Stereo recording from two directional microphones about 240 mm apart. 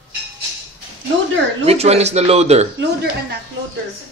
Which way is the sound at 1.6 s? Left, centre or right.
Right.